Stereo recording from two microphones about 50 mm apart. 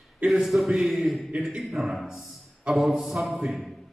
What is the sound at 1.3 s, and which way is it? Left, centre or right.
Speech, centre.